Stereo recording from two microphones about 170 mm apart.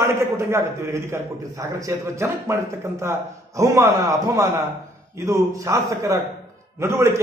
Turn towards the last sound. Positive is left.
turn(degrees=-15)  # may be behind; listen again after turning